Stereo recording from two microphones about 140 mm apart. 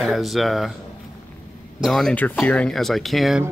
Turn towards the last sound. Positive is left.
turn(degrees=0)  # may be behind; listen again after turning